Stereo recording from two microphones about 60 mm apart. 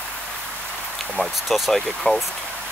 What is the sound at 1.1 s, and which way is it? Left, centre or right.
Speech, centre.